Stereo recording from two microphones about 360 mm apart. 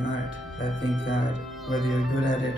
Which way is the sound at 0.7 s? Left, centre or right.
Right.